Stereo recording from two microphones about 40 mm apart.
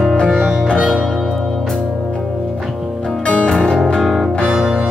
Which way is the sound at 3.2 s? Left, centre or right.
Left.